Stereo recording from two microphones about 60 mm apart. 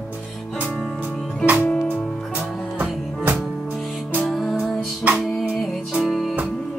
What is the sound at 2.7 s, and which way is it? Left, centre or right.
Music, right.